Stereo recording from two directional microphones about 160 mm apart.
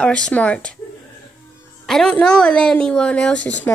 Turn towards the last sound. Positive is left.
turn(degrees=10)  # may be behind; listen again after turning